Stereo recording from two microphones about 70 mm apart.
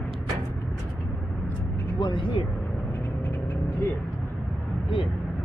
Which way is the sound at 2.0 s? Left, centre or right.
Left.